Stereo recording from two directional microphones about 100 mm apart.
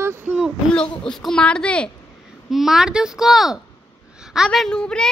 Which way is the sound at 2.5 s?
5° right (ahead or behind).